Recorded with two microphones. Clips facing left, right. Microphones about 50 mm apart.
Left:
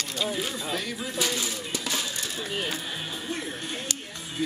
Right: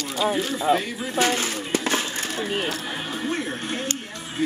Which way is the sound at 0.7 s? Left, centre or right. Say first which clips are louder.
Right 9 dB; right.